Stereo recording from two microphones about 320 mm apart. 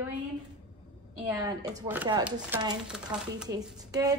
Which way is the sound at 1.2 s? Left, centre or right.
Centre.